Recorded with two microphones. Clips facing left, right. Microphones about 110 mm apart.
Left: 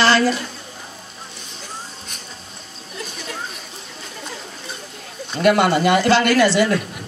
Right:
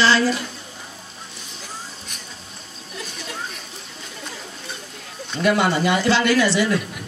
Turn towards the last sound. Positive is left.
turn(degrees=55)  # may be behind; listen again after turning